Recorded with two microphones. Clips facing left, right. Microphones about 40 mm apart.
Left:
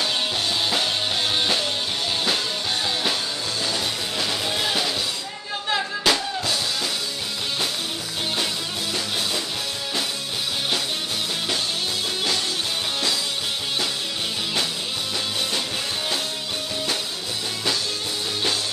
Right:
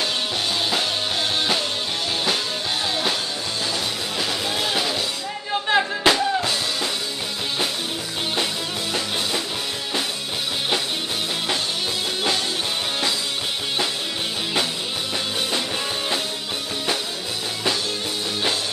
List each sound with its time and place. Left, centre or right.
4.2 s music: centre
5.7 s music: right